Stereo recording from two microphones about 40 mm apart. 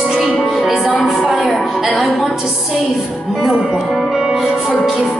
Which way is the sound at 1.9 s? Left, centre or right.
Centre.